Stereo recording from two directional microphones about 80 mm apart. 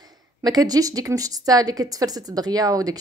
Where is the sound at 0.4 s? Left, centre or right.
Right.